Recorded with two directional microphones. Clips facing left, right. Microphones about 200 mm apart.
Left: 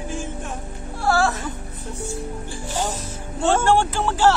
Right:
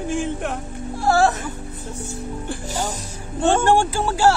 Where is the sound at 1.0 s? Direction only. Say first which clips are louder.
Right 3 dB; 20° right (ahead or behind).